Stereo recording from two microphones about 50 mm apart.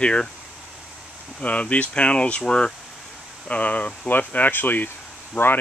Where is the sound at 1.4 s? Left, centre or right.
Left.